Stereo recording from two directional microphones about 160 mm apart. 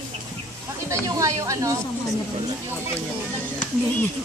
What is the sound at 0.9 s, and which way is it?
Speech, 20° right (ahead or behind).